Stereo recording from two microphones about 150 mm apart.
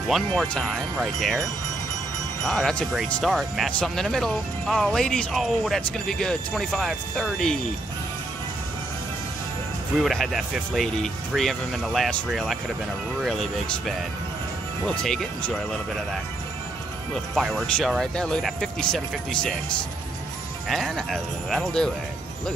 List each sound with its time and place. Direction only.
0.1 s speech: 5° left (ahead or behind)
2.4 s speech: 5° left (ahead or behind)
9.9 s speech: centre (ahead or behind)
17.4 s speech: centre (ahead or behind)
20.6 s speech: centre (ahead or behind)